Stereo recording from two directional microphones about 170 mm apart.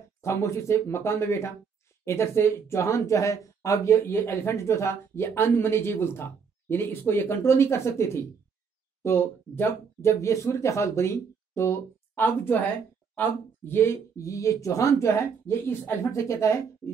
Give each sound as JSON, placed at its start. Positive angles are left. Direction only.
{"t": 0.2, "sound": "speech", "side_deg": 15}